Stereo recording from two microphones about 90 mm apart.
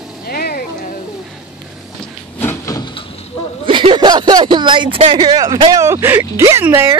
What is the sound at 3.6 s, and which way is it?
Speech, 70° right (ahead or behind).